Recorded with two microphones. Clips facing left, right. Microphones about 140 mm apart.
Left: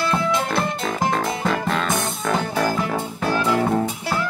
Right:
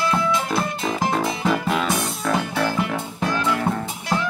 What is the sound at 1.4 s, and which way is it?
Music, 5° right (ahead or behind).